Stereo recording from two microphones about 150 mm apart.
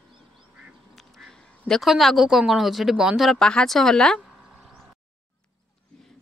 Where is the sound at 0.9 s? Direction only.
Centre (ahead or behind).